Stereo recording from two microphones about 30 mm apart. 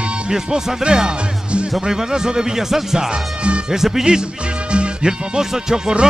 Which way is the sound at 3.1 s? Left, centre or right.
Right.